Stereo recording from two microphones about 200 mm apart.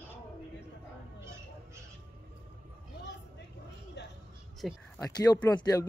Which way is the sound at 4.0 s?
60° left (ahead or behind).